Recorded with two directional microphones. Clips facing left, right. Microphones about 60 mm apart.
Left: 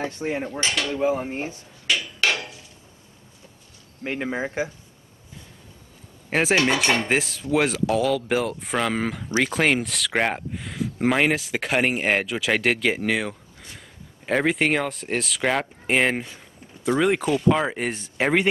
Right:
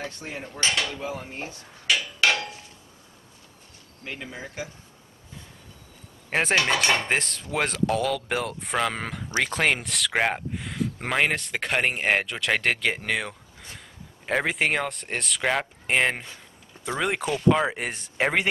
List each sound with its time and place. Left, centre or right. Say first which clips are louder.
0.0 s dishes: left 8 dB; left
4.0 s speech: left 10 dB; left
6.3 s speech: left 3 dB; centre